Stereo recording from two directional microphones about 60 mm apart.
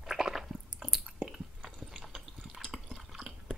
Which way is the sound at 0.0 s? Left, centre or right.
Centre.